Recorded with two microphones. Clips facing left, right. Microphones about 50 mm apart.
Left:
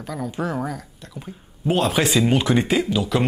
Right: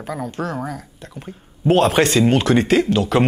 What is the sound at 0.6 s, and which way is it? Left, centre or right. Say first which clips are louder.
Speech: even; centre.